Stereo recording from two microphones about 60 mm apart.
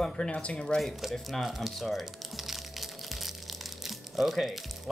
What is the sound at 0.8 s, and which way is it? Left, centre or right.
Music, centre.